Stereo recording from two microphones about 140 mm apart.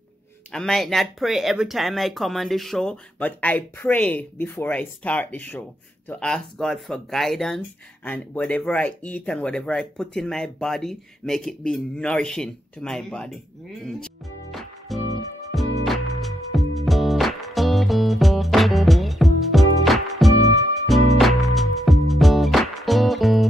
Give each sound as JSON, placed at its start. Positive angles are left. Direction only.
{"t": 0.5, "sound": "speech", "side_deg": 5}
{"t": 13.8, "sound": "music", "side_deg": 5}